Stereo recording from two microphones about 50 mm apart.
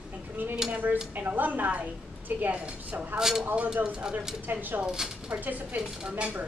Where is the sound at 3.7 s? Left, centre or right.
Right.